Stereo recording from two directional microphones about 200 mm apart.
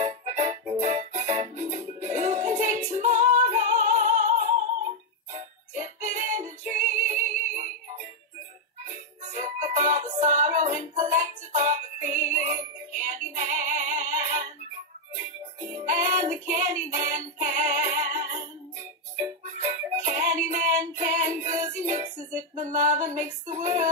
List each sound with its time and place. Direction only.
0.0 s music: 35° right (ahead or behind)
15.9 s music: 40° right (ahead or behind)
19.6 s music: 35° right (ahead or behind)